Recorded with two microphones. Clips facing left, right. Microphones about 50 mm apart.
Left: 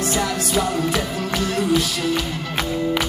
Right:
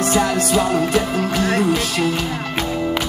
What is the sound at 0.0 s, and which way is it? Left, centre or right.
Music, right.